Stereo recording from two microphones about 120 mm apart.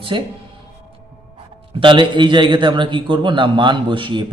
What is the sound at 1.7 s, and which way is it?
A man's voice, 40° right (ahead or behind).